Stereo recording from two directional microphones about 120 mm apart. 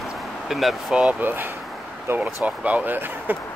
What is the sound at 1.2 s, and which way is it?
Speech, 15° right (ahead or behind).